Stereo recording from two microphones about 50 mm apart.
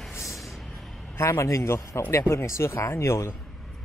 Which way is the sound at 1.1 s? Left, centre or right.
Left.